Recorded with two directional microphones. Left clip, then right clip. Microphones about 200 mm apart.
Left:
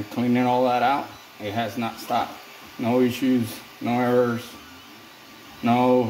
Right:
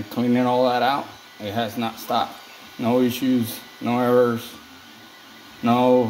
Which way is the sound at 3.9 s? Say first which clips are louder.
Right 3 dB; 30° right (ahead or behind).